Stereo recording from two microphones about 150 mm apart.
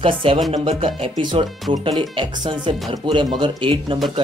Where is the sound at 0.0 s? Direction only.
35° right (ahead or behind).